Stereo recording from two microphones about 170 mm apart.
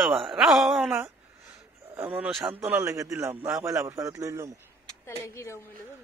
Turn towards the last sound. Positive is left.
turn(degrees=15)  # may be behind; listen again after turning